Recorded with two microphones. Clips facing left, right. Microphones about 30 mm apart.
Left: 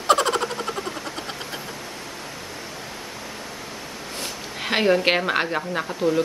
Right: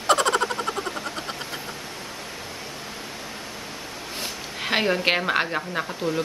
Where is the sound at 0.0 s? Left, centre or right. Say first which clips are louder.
Left 1 dB; centre.